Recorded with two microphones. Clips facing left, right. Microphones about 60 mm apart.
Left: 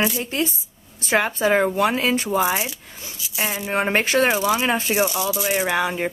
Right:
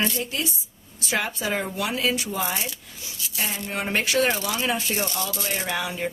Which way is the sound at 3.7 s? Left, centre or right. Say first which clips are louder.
Left 4 dB; left.